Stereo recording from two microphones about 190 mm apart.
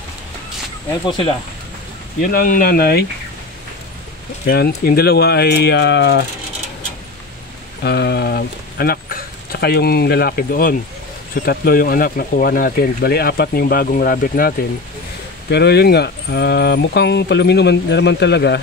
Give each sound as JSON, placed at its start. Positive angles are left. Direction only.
{"t": 1.0, "sound": "speech", "side_deg": 25}
{"t": 2.1, "sound": "speech", "side_deg": 50}
{"t": 4.5, "sound": "speech", "side_deg": 50}
{"t": 7.8, "sound": "speech", "side_deg": 60}
{"t": 15.5, "sound": "speech", "side_deg": 60}